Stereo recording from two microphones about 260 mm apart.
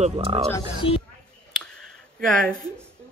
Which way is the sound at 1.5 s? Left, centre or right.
Centre.